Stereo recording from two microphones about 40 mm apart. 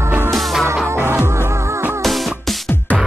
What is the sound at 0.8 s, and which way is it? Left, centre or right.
Music, right.